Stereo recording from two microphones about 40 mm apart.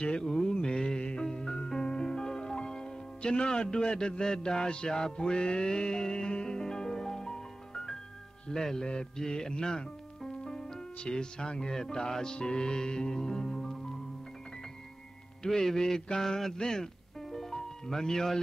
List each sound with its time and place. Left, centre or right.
0.0 s music: left
8.5 s speech: centre
12.4 s music: left
15.4 s music: centre